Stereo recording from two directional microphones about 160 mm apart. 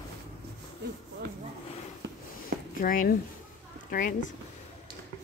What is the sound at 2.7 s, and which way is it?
Speech, 60° left (ahead or behind).